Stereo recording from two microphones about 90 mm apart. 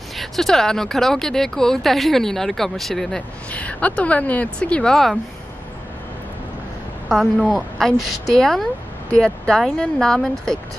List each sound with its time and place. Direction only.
0.2 s speech: 5° left (ahead or behind)
3.5 s a woman's voice: 15° left (ahead or behind)
7.1 s a woman's voice: centre (ahead or behind)